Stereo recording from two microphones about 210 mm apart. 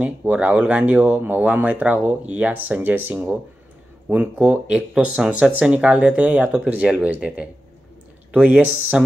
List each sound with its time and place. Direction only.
0.0 s speech: 5° right (ahead or behind)
8.6 s speech: 85° right